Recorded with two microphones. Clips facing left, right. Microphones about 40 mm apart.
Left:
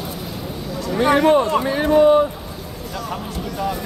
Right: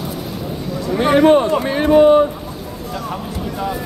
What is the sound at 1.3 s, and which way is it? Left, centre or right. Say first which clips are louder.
Speech: right 3 dB; right.